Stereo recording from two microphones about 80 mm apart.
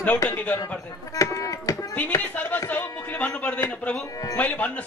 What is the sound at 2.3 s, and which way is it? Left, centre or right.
Speech, centre.